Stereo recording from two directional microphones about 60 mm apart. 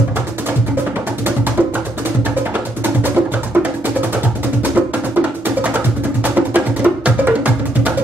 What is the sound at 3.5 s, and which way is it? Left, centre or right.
Music, right.